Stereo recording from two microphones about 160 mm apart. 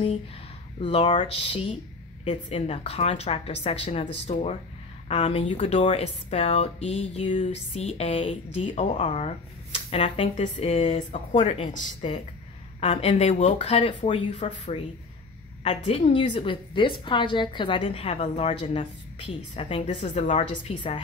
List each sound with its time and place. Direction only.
0.7 s a woman's voice: 35° left (ahead or behind)